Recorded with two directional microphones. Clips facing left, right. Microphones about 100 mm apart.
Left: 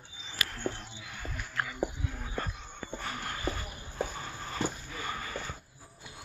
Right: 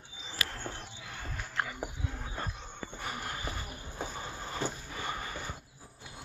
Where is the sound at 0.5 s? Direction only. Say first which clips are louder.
Left 4 dB; 35° right (ahead or behind).